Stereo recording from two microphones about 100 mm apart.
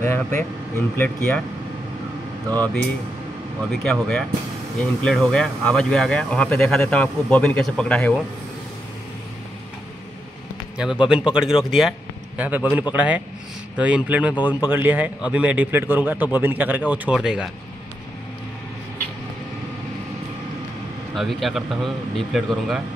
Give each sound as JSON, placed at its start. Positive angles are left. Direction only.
{"t": 0.0, "sound": "speech", "side_deg": 25}
{"t": 3.7, "sound": "speech", "side_deg": 5}
{"t": 10.8, "sound": "a man's voice", "side_deg": -10}
{"t": 12.4, "sound": "a man's voice", "side_deg": -15}
{"t": 14.3, "sound": "speech", "side_deg": 45}
{"t": 14.7, "sound": "a man's voice", "side_deg": -20}
{"t": 21.1, "sound": "a man's voice", "side_deg": 0}